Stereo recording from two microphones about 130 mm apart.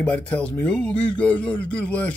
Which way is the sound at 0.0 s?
10° left (ahead or behind).